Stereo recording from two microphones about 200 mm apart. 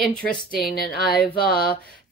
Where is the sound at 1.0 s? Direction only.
50° left (ahead or behind).